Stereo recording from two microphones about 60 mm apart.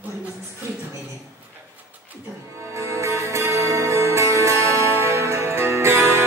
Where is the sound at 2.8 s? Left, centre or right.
Right.